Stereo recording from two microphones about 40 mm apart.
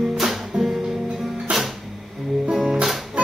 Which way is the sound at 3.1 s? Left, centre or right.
Right.